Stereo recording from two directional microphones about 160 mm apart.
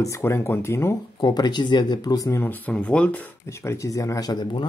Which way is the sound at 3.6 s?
20° left (ahead or behind).